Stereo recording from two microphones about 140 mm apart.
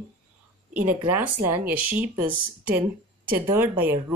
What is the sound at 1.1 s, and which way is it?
Speech, 15° right (ahead or behind).